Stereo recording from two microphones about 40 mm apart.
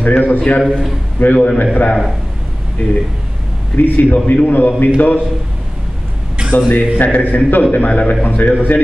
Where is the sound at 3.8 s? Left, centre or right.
Left.